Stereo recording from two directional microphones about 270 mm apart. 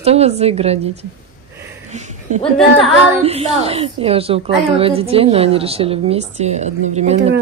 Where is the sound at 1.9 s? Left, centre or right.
Right.